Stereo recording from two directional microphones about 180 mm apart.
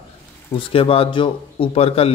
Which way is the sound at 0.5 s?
30° left (ahead or behind).